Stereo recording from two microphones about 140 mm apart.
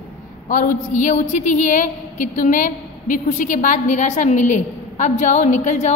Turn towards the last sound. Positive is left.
turn(degrees=55)  # may be behind; listen again after turning